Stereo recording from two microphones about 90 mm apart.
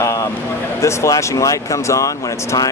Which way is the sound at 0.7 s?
35° left (ahead or behind).